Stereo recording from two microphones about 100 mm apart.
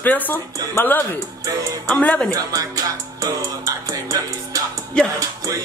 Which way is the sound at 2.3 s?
35° right (ahead or behind).